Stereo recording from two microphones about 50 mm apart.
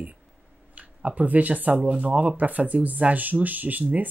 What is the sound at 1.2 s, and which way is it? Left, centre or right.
Speech, right.